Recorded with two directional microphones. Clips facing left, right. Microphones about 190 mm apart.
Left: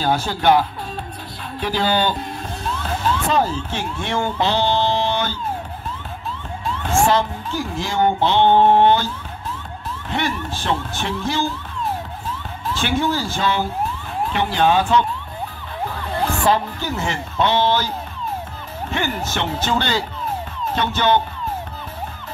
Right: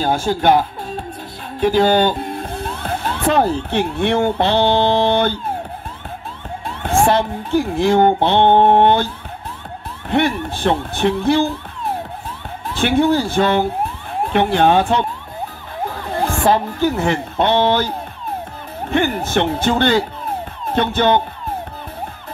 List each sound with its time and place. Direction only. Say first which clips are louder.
0.0 s speech: right 2 dB; 50° right (ahead or behind)
6.6 s speech: right 2 dB; 55° right (ahead or behind)